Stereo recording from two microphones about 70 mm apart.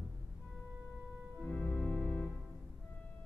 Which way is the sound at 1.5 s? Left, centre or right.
Left.